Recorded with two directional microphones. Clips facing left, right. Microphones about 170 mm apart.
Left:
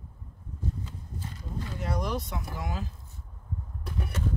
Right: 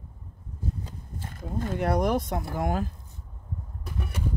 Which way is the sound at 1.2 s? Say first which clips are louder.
Right 6 dB; 55° right (ahead or behind).